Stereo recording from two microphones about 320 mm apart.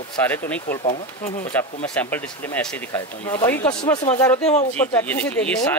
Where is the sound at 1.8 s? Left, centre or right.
Centre.